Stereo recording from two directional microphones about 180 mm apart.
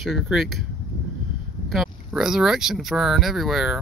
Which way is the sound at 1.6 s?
Centre (ahead or behind).